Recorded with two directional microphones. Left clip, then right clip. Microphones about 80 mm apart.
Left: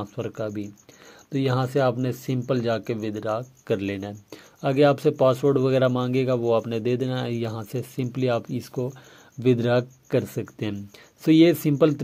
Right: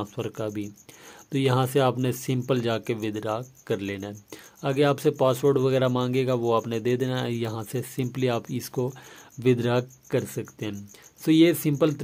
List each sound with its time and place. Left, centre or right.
0.0 s speech: centre
3.6 s speech: left
4.1 s speech: centre
4.9 s speech: centre
9.4 s speech: centre
10.1 s speech: centre